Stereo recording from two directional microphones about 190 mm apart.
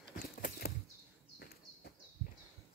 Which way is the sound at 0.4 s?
55° left (ahead or behind).